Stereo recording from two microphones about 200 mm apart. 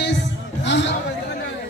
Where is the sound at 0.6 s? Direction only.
65° left (ahead or behind).